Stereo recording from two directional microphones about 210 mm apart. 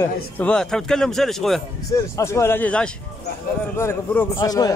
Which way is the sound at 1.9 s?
15° left (ahead or behind).